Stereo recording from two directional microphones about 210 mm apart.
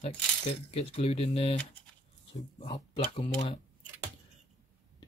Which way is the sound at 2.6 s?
25° left (ahead or behind).